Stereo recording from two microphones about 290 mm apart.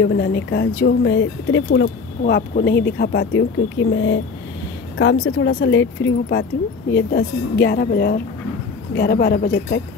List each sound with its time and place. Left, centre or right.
0.0 s speech: left